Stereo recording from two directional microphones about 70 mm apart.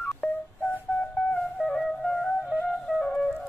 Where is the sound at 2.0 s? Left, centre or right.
Centre.